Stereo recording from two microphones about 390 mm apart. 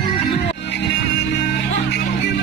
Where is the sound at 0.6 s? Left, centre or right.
Left.